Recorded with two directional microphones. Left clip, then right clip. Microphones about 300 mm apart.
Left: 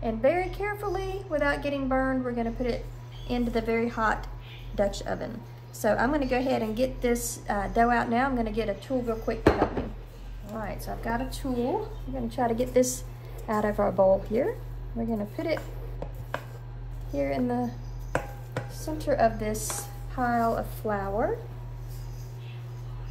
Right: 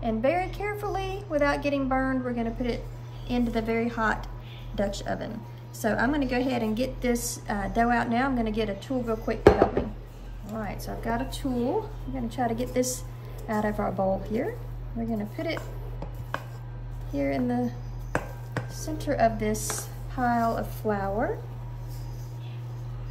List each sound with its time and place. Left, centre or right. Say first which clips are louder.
0.0 s a sound: left 1 dB; centre
3.3 s a woman's voice: even; centre
12.3 s a woman's voice: left 2 dB; centre
17.1 s a woman's voice: even; centre
18.9 s a woman's voice: even; centre